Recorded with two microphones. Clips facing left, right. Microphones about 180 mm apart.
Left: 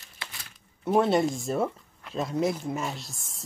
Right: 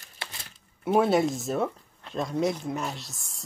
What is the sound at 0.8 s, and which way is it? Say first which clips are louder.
Speech: right 1 dB; 5° right (ahead or behind).